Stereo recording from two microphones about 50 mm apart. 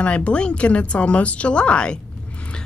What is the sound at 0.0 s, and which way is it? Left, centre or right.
Speech, left.